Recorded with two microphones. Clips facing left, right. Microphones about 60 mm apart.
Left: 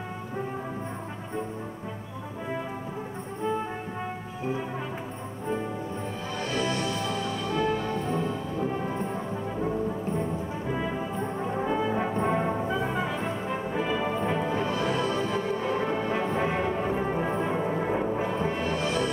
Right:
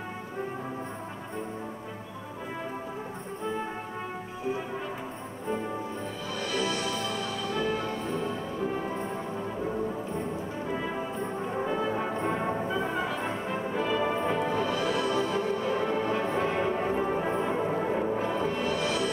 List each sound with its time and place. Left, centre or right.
6.4 s music: left
11.5 s music: centre
14.5 s music: left
15.6 s music: centre
16.7 s music: centre
18.6 s music: left